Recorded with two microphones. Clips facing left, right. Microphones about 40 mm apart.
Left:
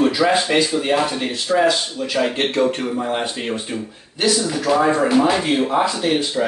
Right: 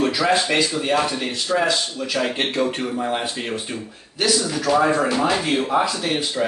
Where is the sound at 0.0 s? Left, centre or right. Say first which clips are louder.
Left 3 dB; centre.